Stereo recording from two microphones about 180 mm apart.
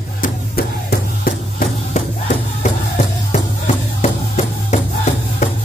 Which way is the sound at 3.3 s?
40° left (ahead or behind).